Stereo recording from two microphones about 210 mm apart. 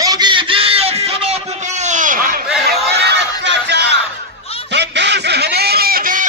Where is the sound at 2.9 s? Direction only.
55° right (ahead or behind).